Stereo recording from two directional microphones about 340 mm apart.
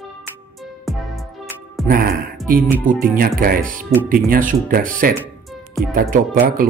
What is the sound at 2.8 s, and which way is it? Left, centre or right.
Speech, right.